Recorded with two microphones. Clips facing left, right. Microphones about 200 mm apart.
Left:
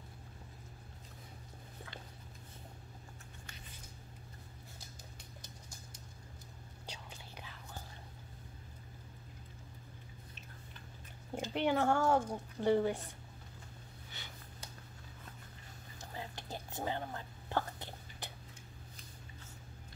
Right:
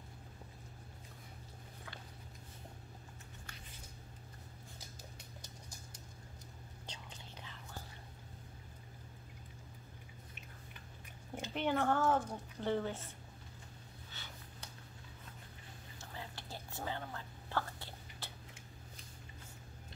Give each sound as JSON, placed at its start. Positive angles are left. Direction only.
{"t": 6.9, "sound": "whispering", "side_deg": 10}
{"t": 11.5, "sound": "a woman's voice", "side_deg": 10}
{"t": 14.2, "sound": "a sound", "side_deg": 15}
{"t": 16.0, "sound": "whispering", "side_deg": 20}